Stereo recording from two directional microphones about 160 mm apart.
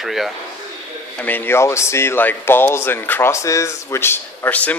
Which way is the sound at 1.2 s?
10° left (ahead or behind).